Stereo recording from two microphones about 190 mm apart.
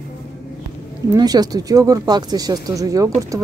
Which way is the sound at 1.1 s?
20° right (ahead or behind).